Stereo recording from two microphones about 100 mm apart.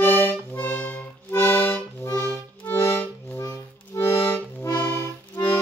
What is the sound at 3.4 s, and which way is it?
Accordion, 25° left (ahead or behind).